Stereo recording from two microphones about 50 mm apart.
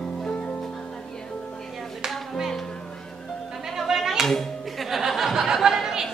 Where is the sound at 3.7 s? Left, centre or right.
Centre.